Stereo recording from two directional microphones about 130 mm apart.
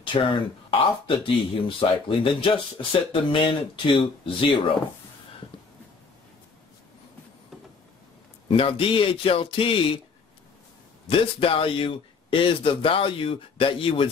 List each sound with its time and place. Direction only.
0.0 s speech: 40° left (ahead or behind)
8.5 s speech: 45° left (ahead or behind)
11.1 s speech: 45° left (ahead or behind)